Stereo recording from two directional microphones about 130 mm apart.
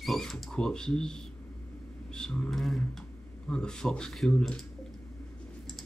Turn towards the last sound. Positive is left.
turn(degrees=5)  # may be behind; listen again after turning